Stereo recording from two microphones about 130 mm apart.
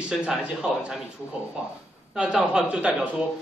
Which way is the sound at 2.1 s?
5° right (ahead or behind).